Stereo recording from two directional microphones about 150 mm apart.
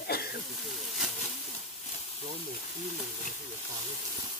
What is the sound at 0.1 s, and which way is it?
Snake, 90° left.